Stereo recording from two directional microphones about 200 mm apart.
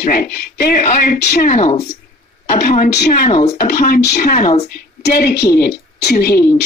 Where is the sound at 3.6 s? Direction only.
45° left (ahead or behind).